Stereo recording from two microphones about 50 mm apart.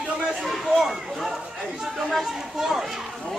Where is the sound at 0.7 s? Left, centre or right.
Centre.